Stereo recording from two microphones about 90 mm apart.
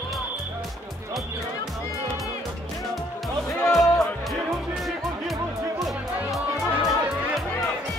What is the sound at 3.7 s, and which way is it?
Music, centre (ahead or behind).